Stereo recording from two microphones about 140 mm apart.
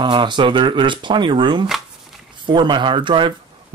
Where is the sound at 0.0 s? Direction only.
35° right (ahead or behind).